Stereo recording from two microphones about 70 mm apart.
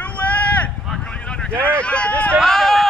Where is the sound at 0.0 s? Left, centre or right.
Centre.